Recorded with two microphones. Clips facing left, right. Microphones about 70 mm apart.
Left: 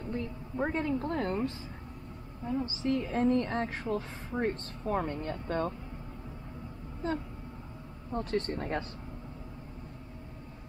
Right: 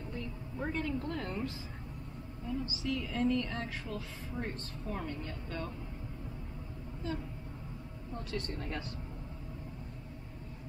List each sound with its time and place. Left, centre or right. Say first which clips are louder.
0.1 s a woman's voice: left 8 dB; left
8.1 s a woman's voice: left 8 dB; left